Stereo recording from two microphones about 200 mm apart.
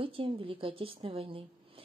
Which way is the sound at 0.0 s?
25° right (ahead or behind).